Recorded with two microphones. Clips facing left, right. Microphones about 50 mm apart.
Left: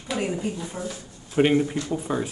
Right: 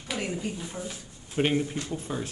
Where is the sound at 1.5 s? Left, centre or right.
Left.